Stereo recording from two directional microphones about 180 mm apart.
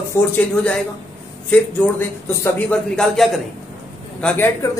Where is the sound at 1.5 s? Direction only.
10° left (ahead or behind).